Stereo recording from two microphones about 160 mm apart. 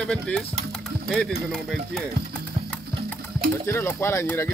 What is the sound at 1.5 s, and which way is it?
Speech, 5° left (ahead or behind).